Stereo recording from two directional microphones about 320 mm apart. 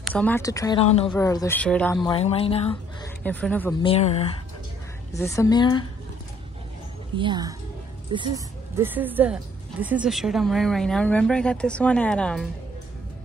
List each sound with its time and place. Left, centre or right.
0.0 s speech: centre
2.1 s speech: centre
3.3 s a woman's voice: centre
3.8 s speech: centre
7.2 s a woman's voice: centre
8.7 s a woman's voice: centre